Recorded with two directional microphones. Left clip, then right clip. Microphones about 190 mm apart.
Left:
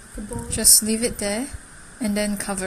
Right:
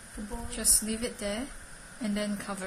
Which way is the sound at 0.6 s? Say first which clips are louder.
Left 11 dB; 25° left (ahead or behind).